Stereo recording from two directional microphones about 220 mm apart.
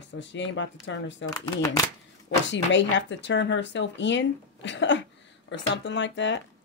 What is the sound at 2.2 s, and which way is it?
Speech, 55° left (ahead or behind).